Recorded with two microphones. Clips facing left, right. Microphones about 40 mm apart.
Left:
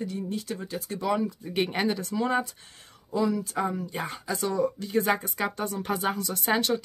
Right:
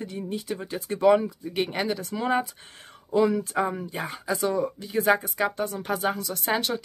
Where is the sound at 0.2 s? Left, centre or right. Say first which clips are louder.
Right 1 dB; centre.